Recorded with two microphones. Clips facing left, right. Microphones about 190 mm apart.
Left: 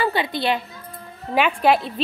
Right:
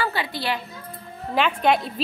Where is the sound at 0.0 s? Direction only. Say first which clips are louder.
Left 5 dB; 20° left (ahead or behind).